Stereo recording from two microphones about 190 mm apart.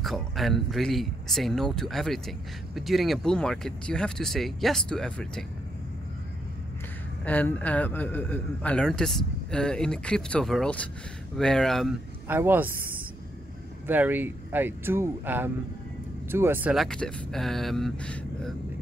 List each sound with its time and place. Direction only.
0.0 s speech: centre (ahead or behind)
7.2 s speech: 10° left (ahead or behind)
12.3 s speech: 10° right (ahead or behind)
13.8 s speech: 10° right (ahead or behind); by 18.5 s 5° left (ahead or behind)